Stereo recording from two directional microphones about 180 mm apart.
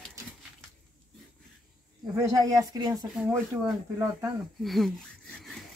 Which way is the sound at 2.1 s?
15° right (ahead or behind).